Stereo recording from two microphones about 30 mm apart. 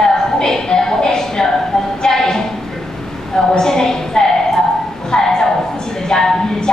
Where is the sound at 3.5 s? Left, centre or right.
Centre.